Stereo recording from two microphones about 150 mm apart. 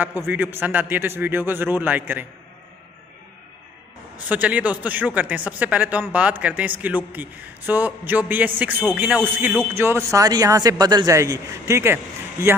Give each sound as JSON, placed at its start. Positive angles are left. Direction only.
{"t": 0.0, "sound": "a man's voice", "side_deg": -15}
{"t": 4.3, "sound": "a man's voice", "side_deg": -10}